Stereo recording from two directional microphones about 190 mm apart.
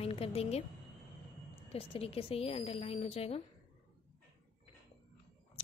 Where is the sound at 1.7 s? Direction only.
30° left (ahead or behind).